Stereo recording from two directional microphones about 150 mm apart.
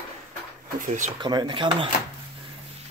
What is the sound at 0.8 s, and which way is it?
Speech, 55° right (ahead or behind).